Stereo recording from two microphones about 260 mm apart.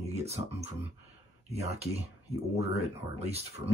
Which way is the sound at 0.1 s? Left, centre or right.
Right.